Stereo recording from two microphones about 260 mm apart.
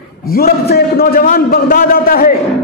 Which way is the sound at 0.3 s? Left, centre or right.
Left.